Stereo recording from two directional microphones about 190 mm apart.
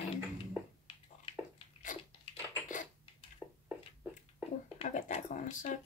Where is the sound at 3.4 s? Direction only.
5° right (ahead or behind).